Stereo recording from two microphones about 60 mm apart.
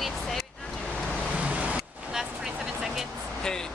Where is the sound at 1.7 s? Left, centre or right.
Centre.